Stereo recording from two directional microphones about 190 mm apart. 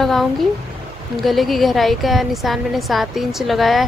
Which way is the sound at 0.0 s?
Centre (ahead or behind).